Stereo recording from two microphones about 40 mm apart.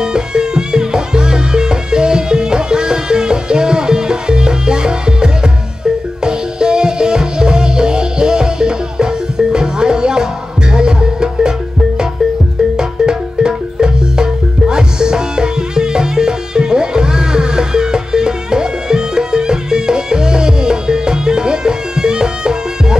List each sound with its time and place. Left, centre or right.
0.0 s music: centre
12.7 s music: centre